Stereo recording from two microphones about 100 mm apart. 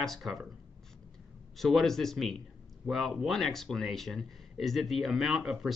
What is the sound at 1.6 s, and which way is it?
Speech, centre (ahead or behind).